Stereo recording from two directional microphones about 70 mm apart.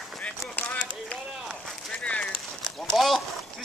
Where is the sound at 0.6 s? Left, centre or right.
Centre.